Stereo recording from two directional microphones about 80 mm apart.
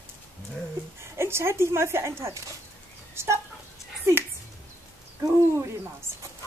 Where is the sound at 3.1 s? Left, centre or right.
Right.